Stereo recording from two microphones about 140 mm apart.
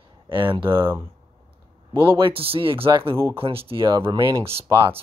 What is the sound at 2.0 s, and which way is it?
Speech, 35° right (ahead or behind).